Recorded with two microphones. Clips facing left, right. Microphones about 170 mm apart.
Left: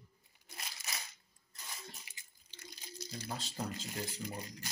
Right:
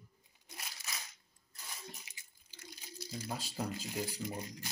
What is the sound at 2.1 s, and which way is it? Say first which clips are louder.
Water: even; 15° right (ahead or behind).